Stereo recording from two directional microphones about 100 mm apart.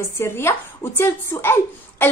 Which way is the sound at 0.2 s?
25° left (ahead or behind).